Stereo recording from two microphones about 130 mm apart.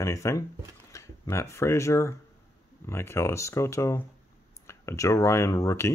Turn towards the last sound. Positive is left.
turn(degrees=20)  # may be behind; listen again after turning